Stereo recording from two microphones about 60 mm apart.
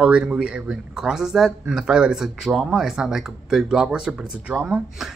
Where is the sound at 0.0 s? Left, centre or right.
Centre.